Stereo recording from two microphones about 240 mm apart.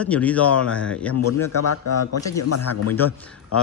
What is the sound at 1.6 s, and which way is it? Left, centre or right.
A man's voice, left.